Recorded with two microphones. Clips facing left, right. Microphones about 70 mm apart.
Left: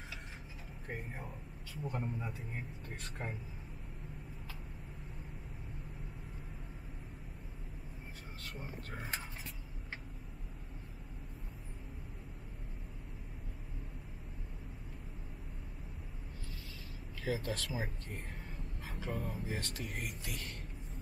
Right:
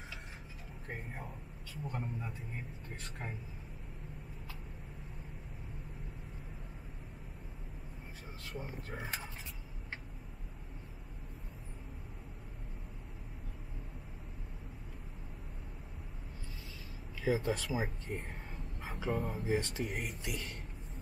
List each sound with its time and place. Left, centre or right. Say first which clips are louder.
0.8 s speech: even; centre
8.5 s speech: right 3 dB; centre
17.2 s speech: right 5 dB; centre
18.8 s a sound: right 5 dB; right
19.4 s speech: right 7 dB; centre